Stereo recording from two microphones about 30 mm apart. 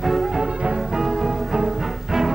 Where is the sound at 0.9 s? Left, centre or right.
Centre.